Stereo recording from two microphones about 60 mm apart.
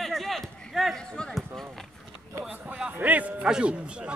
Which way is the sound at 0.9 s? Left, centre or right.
Centre.